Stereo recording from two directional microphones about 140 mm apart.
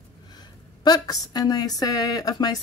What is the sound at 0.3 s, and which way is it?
A woman's voice, 30° left (ahead or behind).